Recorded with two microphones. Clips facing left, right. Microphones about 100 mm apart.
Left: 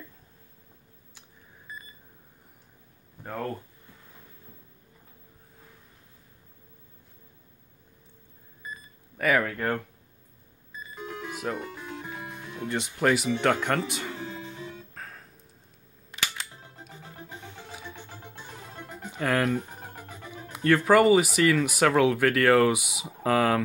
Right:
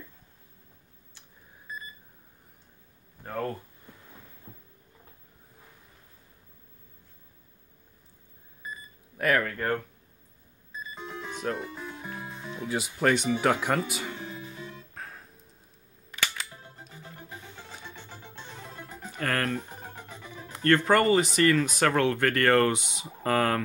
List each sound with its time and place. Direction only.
9.2 s speech: 5° left (ahead or behind)
11.2 s music: 5° left (ahead or behind)
11.6 s music: 70° left (ahead or behind)
12.6 s speech: 5° right (ahead or behind)
15.0 s music: centre (ahead or behind)
17.8 s music: 15° left (ahead or behind)
20.5 s speech: 5° left (ahead or behind)